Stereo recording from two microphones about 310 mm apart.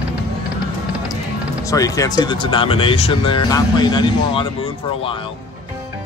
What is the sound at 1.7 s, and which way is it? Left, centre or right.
Speech, centre.